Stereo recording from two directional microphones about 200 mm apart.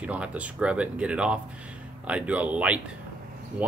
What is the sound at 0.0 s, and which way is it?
Speech, 5° right (ahead or behind).